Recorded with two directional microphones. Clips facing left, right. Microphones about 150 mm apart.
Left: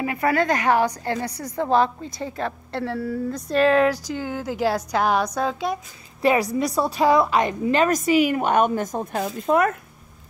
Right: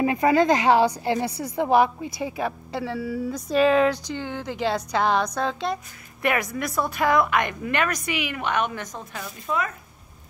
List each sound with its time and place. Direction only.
0.0 s a woman's voice: 20° right (ahead or behind); by 5.8 s 5° left (ahead or behind)
6.2 s a woman's voice: 30° left (ahead or behind)
7.9 s speech: 40° left (ahead or behind)